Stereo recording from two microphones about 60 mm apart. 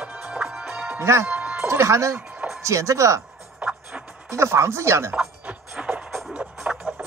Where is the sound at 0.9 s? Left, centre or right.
Right.